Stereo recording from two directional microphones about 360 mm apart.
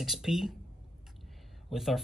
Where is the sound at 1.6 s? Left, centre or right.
Centre.